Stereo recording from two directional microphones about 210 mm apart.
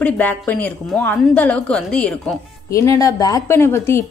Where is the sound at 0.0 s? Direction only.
5° left (ahead or behind).